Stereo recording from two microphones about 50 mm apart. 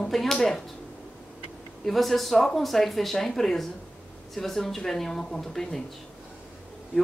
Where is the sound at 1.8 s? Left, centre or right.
Centre.